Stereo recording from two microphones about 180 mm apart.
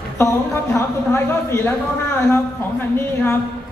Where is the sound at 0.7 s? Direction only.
15° left (ahead or behind).